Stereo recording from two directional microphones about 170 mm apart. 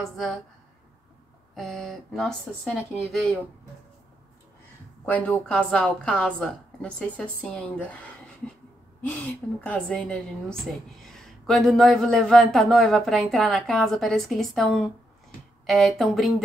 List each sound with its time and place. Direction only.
1.5 s a woman's voice: centre (ahead or behind)
5.0 s a woman's voice: 10° left (ahead or behind)
9.1 s a woman's voice: 5° left (ahead or behind)